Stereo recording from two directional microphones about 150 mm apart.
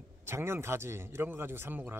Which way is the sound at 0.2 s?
15° right (ahead or behind).